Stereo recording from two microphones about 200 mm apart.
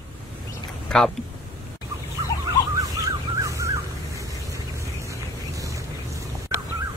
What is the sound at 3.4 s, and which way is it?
Car alarm, 15° right (ahead or behind).